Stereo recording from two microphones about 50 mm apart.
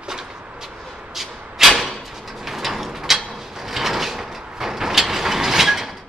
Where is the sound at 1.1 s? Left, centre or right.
Centre.